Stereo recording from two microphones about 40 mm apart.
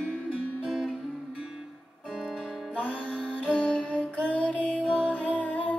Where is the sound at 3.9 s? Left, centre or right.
Left.